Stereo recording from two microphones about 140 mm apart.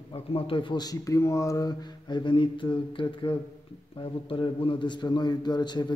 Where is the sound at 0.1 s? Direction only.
40° left (ahead or behind).